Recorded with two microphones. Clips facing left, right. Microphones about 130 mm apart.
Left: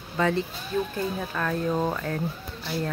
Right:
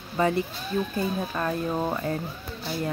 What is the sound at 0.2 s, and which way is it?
Speech, 10° right (ahead or behind).